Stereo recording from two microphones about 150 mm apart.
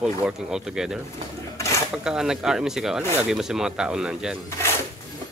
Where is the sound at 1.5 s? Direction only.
20° left (ahead or behind).